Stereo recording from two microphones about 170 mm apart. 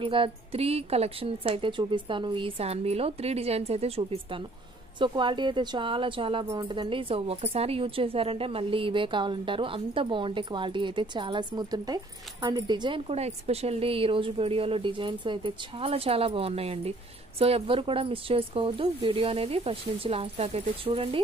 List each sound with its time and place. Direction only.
0.0 s speech: 30° right (ahead or behind)
13.1 s speech: 40° right (ahead or behind)